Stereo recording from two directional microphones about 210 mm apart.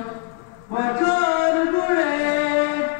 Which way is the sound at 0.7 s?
20° left (ahead or behind).